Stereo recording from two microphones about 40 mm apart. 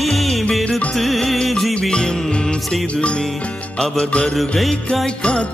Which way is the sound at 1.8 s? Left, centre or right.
Left.